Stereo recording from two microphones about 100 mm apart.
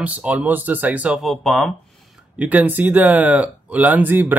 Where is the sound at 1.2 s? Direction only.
Centre (ahead or behind).